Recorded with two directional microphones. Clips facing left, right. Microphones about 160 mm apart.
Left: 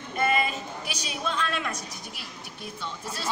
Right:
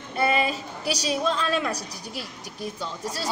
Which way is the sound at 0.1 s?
35° right (ahead or behind).